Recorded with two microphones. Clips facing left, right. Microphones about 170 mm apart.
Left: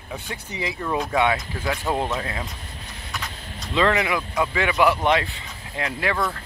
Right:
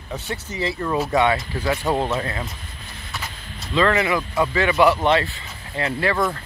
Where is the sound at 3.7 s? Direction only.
15° left (ahead or behind).